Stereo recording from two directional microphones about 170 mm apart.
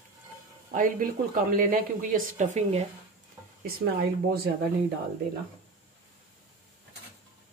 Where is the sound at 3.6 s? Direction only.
65° right (ahead or behind).